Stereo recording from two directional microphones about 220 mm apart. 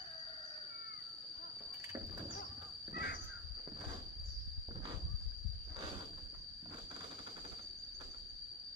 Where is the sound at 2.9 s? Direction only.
45° left (ahead or behind).